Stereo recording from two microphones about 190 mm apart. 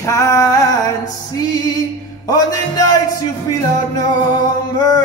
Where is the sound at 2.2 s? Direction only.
20° left (ahead or behind).